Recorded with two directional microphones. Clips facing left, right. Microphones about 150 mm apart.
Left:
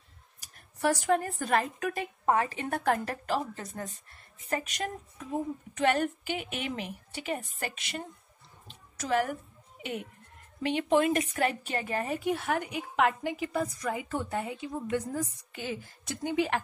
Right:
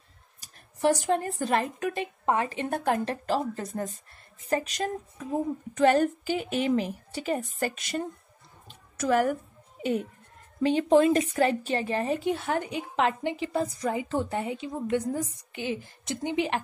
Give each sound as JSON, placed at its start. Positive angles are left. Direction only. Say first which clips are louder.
{"t": 0.4, "sound": "speech", "louder": "right 4 dB", "side_deg": -25}
{"t": 3.3, "sound": "a woman's voice", "louder": "right 2 dB", "side_deg": -35}
{"t": 8.6, "sound": "a sound", "louder": "right 6 dB", "side_deg": -45}
{"t": 9.8, "sound": "music", "louder": "right 9 dB", "side_deg": -35}
{"t": 10.6, "sound": "a woman's voice", "louder": "right 5 dB", "side_deg": -35}